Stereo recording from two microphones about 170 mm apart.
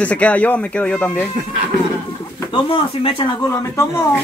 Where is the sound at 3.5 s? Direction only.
20° left (ahead or behind).